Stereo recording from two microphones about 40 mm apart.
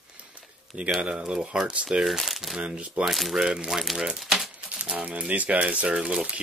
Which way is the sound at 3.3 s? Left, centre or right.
Centre.